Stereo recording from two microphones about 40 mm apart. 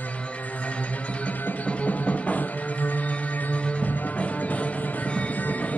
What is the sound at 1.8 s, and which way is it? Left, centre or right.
Music, left.